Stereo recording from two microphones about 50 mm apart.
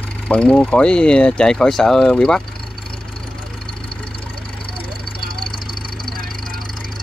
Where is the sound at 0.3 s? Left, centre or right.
Left.